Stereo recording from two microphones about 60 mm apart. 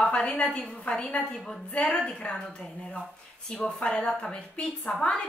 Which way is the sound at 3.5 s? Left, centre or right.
Centre.